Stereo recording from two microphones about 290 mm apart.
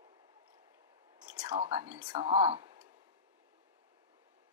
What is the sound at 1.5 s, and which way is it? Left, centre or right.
Speech, right.